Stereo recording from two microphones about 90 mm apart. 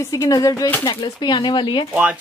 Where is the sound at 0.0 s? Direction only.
40° left (ahead or behind).